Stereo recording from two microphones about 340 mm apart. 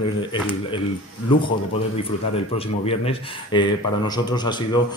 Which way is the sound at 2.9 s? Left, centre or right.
Centre.